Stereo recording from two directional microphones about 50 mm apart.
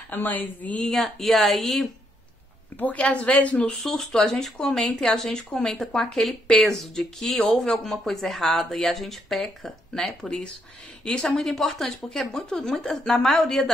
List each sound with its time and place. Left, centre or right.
0.1 s speech: left
0.8 s speech: centre
2.8 s a woman's voice: left
3.8 s speech: centre
9.9 s speech: centre